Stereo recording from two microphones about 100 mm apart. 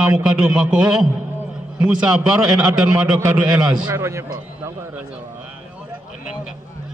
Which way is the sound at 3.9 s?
30° right (ahead or behind).